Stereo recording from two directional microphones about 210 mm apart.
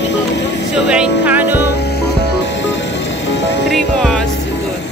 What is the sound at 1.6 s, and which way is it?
Music, 55° left (ahead or behind).